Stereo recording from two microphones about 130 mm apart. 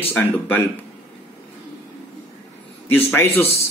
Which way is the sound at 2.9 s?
15° left (ahead or behind).